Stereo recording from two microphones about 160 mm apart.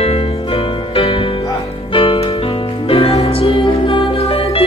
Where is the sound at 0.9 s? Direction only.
35° left (ahead or behind).